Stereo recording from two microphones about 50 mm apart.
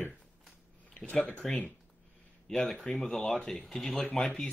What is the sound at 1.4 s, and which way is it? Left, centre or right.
Speech, centre.